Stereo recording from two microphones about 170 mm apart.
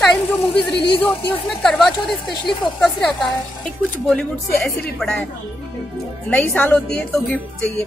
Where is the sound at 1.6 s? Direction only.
Centre (ahead or behind).